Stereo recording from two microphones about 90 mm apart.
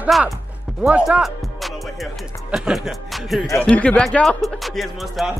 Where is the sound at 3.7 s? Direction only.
15° left (ahead or behind).